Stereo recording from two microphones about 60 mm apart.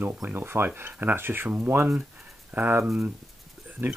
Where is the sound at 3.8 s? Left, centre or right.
Right.